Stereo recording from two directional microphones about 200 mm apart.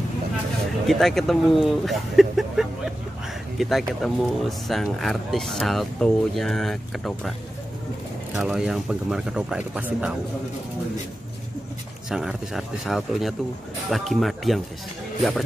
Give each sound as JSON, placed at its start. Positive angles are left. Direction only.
{"t": 0.8, "sound": "speech", "side_deg": 0}
{"t": 8.4, "sound": "speech", "side_deg": -5}
{"t": 12.1, "sound": "speech", "side_deg": 0}